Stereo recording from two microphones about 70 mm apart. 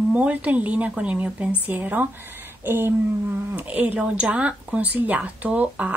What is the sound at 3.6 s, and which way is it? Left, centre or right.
Speech, right.